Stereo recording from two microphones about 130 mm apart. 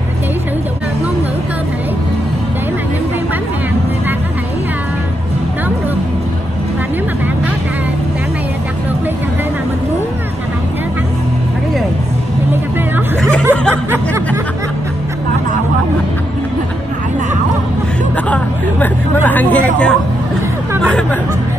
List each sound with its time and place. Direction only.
13.5 s snicker: 20° right (ahead or behind)
18.1 s vehicle: 10° left (ahead or behind)
20.8 s hubbub: 5° left (ahead or behind)